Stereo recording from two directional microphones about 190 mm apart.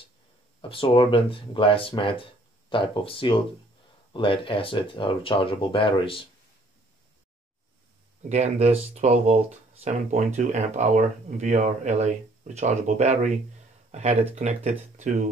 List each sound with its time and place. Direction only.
0.6 s speech: 25° left (ahead or behind)
8.2 s speech: 35° right (ahead or behind)